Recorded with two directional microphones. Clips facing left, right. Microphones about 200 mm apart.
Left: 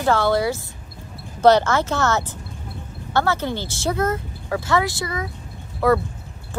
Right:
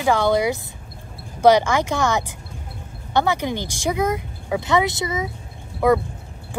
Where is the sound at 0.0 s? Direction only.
15° right (ahead or behind).